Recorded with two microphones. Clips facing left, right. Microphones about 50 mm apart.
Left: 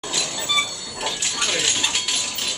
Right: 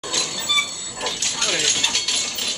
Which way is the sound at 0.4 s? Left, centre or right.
Centre.